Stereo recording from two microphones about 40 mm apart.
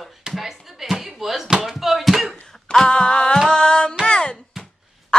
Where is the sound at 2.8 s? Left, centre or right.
Left.